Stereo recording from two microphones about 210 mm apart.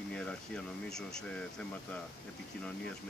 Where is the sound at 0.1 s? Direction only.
5° left (ahead or behind).